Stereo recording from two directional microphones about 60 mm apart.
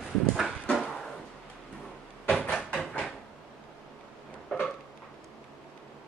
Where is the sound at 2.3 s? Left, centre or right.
Centre.